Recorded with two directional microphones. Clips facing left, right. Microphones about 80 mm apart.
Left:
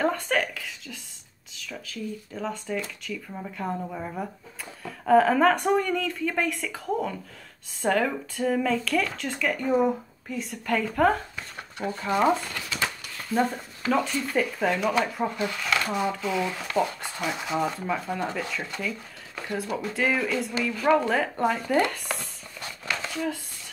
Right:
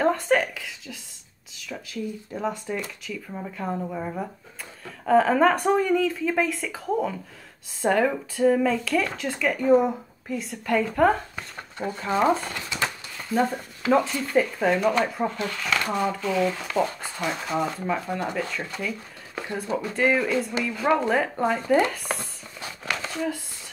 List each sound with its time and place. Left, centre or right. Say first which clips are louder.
0.0 s a sound: right 4 dB; centre
2.3 s speech: right 2 dB; centre
12.4 s speech: right 2 dB; right
13.3 s speech: right 1 dB; centre
15.3 s speech: even; centre
19.3 s speech: right 2 dB; right
19.8 s speech: right 4 dB; centre